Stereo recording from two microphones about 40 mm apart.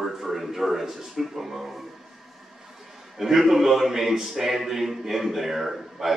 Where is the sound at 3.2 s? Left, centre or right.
Centre.